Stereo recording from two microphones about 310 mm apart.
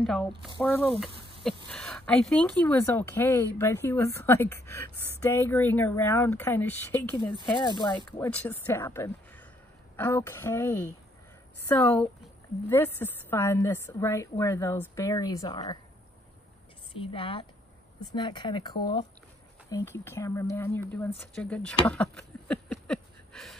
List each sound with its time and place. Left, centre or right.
0.0 s speech: centre
0.5 s speech: centre
1.4 s speech: centre
11.8 s speech: centre
17.0 s speech: centre